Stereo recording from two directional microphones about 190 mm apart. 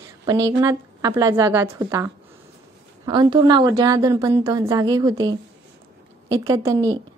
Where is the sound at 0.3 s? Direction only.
20° right (ahead or behind).